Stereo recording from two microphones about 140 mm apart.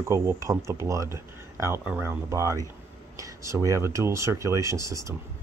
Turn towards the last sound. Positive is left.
turn(degrees=-20)  # may be behind; listen again after turning